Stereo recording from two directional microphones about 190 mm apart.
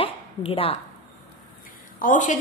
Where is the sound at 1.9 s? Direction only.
45° left (ahead or behind).